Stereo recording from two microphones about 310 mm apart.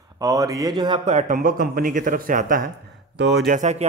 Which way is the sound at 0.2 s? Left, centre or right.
Centre.